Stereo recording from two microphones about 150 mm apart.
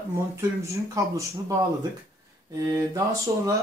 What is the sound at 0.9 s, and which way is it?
Speech, 20° right (ahead or behind).